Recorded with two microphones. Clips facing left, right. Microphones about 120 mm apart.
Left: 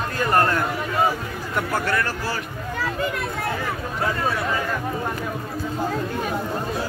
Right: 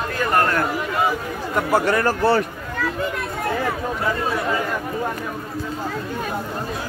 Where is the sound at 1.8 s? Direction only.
35° right (ahead or behind).